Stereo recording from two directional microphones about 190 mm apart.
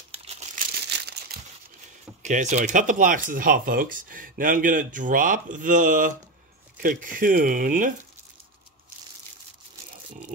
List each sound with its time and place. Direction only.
0.1 s crumpling: 30° right (ahead or behind)
0.8 s crumpling: 60° right (ahead or behind)
2.2 s speech: 40° right (ahead or behind)